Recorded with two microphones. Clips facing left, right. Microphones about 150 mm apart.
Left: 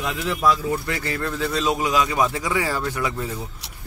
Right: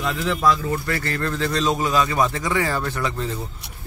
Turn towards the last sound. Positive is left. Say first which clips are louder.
# even
turn(degrees=10)  # may be behind; listen again after turning